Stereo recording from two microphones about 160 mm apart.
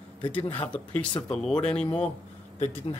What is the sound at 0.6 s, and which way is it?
A man's voice, 10° left (ahead or behind).